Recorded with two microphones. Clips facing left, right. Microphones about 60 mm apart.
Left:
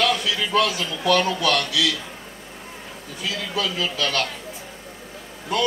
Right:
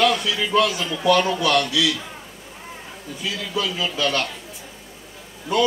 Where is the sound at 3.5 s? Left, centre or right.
Centre.